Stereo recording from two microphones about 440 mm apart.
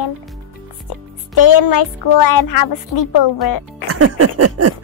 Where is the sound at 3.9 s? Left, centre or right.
Right.